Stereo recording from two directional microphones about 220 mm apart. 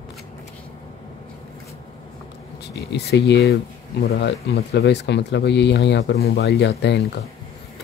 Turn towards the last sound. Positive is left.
turn(degrees=50)  # may be behind; listen again after turning